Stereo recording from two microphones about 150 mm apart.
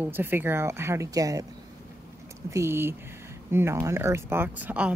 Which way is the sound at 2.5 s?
15° right (ahead or behind).